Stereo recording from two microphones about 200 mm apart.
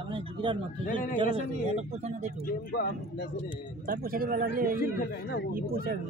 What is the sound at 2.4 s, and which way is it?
Speech, 50° left (ahead or behind).